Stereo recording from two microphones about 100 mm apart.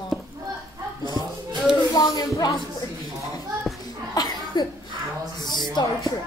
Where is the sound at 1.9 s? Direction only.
40° left (ahead or behind).